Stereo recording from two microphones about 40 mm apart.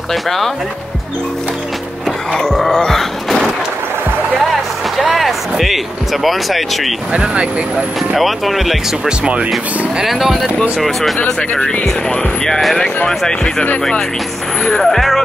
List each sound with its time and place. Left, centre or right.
0.1 s speech: centre
2.3 s a sound: centre
5.1 s speech: centre
7.3 s speech: right
8.2 s speech: centre
9.2 s speech: right
10.0 s speech: centre
11.1 s speech: left
11.6 s speech: left
14.8 s speech: centre